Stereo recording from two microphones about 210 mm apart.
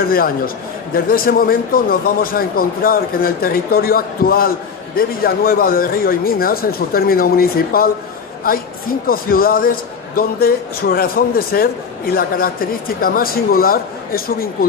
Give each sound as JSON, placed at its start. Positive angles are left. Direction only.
{"t": 0.9, "sound": "a man's voice", "side_deg": 45}